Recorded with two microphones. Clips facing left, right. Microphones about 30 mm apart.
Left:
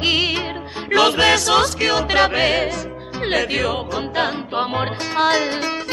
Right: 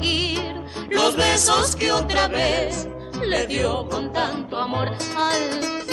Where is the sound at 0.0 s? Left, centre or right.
Centre.